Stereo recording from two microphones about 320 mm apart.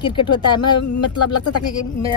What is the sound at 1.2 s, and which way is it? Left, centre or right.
Speech, left.